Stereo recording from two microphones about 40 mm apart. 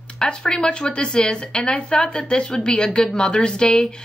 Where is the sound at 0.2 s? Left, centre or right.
Left.